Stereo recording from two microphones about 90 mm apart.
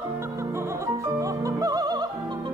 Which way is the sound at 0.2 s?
30° right (ahead or behind).